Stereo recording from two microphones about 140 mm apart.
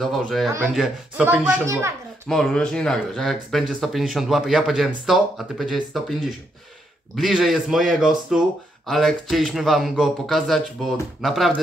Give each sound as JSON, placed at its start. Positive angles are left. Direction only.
{"t": 0.0, "sound": "speech", "side_deg": 0}
{"t": 1.7, "sound": "a child's voice", "side_deg": -20}
{"t": 2.2, "sound": "speech", "side_deg": 5}
{"t": 7.2, "sound": "speech", "side_deg": 0}